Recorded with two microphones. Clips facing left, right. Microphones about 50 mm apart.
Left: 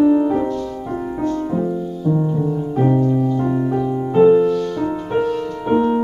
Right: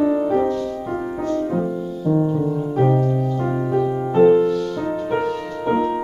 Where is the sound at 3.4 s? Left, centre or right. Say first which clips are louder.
Left 1 dB; centre.